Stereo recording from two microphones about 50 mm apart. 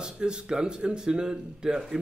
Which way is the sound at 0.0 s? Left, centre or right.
Centre.